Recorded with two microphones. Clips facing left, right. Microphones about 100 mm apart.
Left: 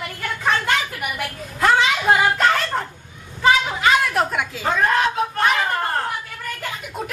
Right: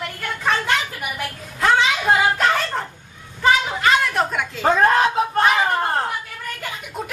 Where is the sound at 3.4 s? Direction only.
5° left (ahead or behind).